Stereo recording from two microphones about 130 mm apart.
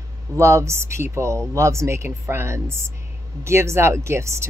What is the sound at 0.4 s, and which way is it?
Speech, 20° right (ahead or behind).